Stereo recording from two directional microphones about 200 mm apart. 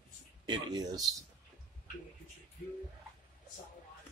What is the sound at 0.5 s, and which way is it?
Speech, 20° right (ahead or behind).